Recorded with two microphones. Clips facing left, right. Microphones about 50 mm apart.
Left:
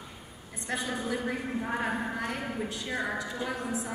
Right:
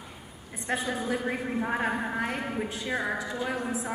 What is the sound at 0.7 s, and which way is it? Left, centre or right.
A woman's voice, right.